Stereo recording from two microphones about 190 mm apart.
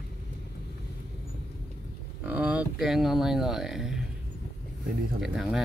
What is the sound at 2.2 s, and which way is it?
Speech, 10° right (ahead or behind).